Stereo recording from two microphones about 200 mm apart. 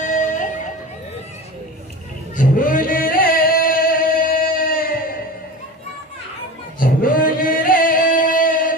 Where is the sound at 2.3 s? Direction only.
40° left (ahead or behind).